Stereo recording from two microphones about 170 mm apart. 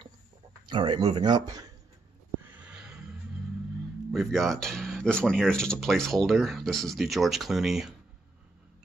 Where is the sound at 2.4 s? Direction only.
10° right (ahead or behind).